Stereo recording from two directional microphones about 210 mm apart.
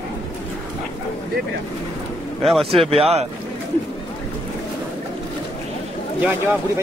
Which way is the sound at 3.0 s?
30° right (ahead or behind).